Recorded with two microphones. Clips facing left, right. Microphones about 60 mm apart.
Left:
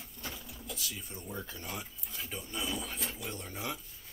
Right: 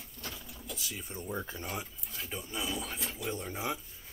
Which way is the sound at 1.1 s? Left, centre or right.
Centre.